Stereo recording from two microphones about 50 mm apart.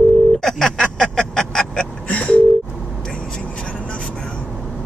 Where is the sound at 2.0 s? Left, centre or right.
Left.